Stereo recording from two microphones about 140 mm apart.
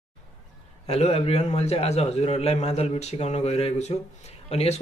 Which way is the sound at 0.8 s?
45° left (ahead or behind).